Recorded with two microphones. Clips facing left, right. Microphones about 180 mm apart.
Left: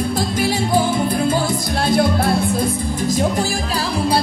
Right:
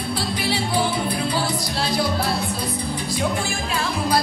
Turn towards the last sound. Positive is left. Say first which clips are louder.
# left 5 dB
turn(degrees=45)  # may be behind; listen again after turning